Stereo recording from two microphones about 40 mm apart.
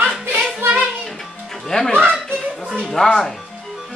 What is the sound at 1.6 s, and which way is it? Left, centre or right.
Speech, centre.